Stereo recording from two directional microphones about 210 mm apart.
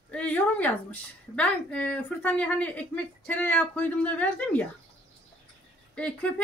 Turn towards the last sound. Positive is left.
turn(degrees=5)  # may be behind; listen again after turning